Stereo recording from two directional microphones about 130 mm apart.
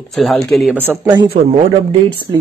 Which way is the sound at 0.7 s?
15° right (ahead or behind).